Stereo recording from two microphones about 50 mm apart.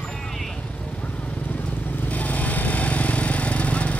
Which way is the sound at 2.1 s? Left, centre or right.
Left.